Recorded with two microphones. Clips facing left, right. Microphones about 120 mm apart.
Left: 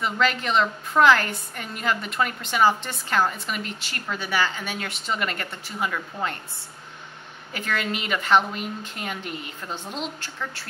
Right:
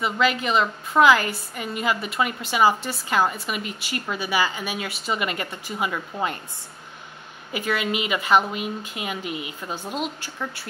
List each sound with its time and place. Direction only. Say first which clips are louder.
0.0 s a woman's voice: right 2 dB; 5° right (ahead or behind)
7.5 s a woman's voice: right 3 dB; 10° right (ahead or behind)